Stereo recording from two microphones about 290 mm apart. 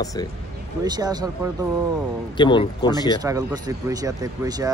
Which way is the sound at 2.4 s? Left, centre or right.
Centre.